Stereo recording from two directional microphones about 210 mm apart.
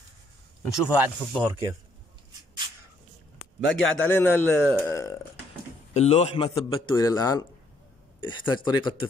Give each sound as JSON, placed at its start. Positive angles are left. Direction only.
{"t": 0.7, "sound": "speech", "side_deg": -5}
{"t": 3.3, "sound": "a sound", "side_deg": 65}
{"t": 4.0, "sound": "a man's voice", "side_deg": 10}
{"t": 5.9, "sound": "a man's voice", "side_deg": 30}